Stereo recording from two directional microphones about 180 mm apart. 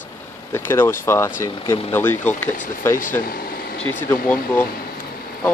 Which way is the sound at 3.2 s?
50° left (ahead or behind).